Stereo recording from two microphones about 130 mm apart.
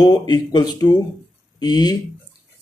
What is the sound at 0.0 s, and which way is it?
Speech, 35° left (ahead or behind).